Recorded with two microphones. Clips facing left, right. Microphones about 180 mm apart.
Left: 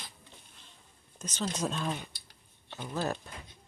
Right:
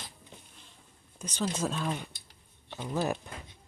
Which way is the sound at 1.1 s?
10° right (ahead or behind).